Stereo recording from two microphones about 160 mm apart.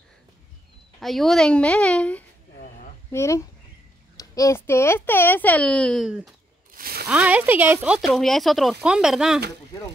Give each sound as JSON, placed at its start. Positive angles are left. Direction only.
{"t": 0.9, "sound": "speech", "side_deg": 0}
{"t": 6.7, "sound": "a sound", "side_deg": -70}
{"t": 7.1, "sound": "speech", "side_deg": -10}